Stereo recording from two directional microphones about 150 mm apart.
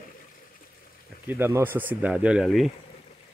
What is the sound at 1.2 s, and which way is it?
Speech, 15° right (ahead or behind).